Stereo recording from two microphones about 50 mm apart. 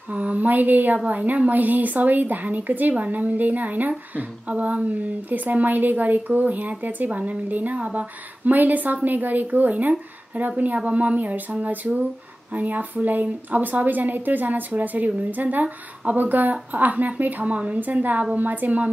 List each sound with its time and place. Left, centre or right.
0.1 s a woman's voice: right
10.8 s a woman's voice: right